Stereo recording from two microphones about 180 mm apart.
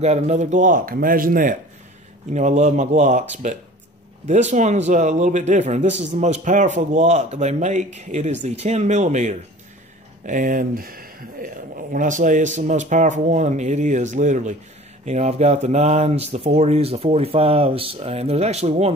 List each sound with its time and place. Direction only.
0.0 s a man's voice: 40° right (ahead or behind)